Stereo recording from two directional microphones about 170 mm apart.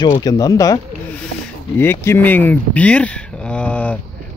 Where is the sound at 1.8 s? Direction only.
15° left (ahead or behind).